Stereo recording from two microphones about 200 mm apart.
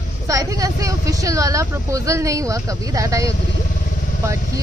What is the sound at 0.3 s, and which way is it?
Speech, 15° right (ahead or behind).